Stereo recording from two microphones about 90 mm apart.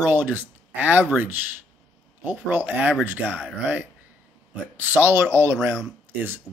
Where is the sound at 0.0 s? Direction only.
20° right (ahead or behind).